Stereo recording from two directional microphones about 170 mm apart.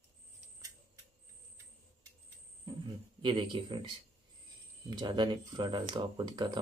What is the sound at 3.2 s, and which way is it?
Speech, 30° right (ahead or behind).